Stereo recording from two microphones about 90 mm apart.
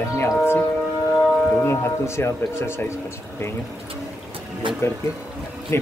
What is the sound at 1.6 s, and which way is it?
Speech, 30° left (ahead or behind).